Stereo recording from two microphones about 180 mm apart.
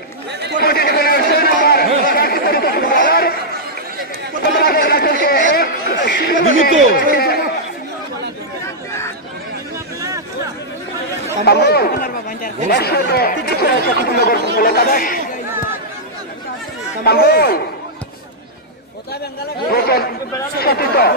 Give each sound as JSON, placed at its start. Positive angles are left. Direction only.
{"t": 0.6, "sound": "chatter", "side_deg": 60}
{"t": 4.6, "sound": "chatter", "side_deg": 60}
{"t": 7.0, "sound": "a sound", "side_deg": 60}
{"t": 11.4, "sound": "chatter", "side_deg": 65}
{"t": 14.5, "sound": "speech", "side_deg": 55}
{"t": 17.0, "sound": "a sound", "side_deg": 60}
{"t": 19.7, "sound": "chatter", "side_deg": 60}